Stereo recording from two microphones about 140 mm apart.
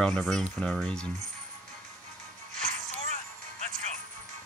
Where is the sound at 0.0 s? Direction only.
5° left (ahead or behind).